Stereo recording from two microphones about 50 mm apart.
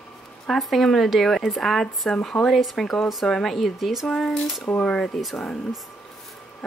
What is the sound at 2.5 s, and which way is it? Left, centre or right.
Speech, centre.